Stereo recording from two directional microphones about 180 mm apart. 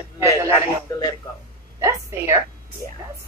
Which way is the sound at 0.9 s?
15° left (ahead or behind).